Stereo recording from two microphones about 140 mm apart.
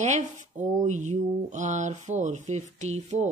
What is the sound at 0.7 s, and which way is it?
Speech, 60° right (ahead or behind).